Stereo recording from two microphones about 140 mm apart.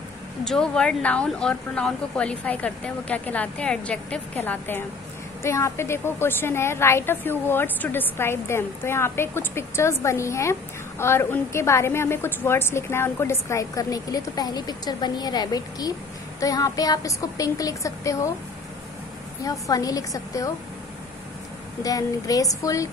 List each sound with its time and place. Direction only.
0.5 s a woman's voice: 5° left (ahead or behind); by 18.3 s 20° left (ahead or behind)
19.4 s speech: 25° left (ahead or behind)
21.8 s speech: 25° left (ahead or behind)